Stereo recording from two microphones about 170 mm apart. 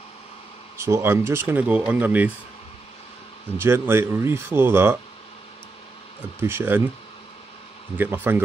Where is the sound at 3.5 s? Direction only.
15° right (ahead or behind).